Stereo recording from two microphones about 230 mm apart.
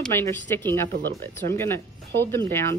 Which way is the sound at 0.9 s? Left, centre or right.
Right.